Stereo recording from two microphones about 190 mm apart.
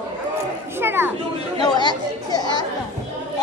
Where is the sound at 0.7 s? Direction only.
10° right (ahead or behind).